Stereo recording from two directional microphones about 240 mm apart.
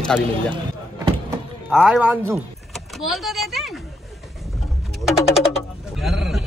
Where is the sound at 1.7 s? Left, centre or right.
Centre.